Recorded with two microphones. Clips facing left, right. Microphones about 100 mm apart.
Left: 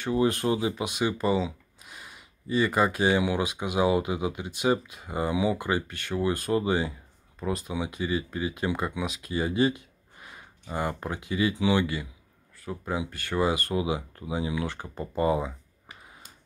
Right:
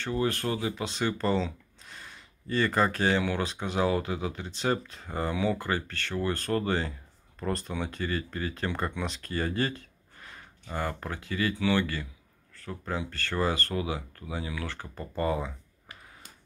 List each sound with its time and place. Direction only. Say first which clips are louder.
0.0 s speech: left 4 dB; 15° left (ahead or behind)